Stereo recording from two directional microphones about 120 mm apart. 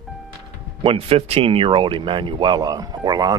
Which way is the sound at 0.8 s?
55° right (ahead or behind).